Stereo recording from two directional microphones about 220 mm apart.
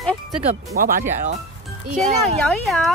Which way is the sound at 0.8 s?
40° right (ahead or behind).